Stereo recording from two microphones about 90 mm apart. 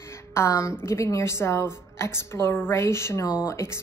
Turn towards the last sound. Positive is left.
turn(degrees=30)  # may be behind; listen again after turning